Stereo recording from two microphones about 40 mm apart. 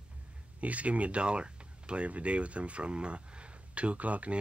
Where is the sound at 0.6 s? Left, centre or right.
Right.